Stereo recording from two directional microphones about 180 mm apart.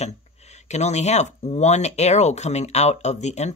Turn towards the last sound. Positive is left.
turn(degrees=40)  # may be behind; listen again after turning